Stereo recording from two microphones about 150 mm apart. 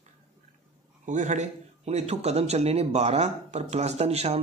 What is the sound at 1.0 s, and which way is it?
Speech, 55° right (ahead or behind).